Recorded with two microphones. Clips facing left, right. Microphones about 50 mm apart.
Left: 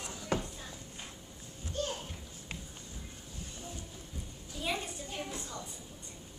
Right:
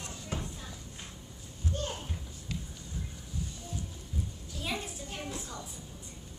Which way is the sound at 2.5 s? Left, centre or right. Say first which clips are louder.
Right 5 dB; left.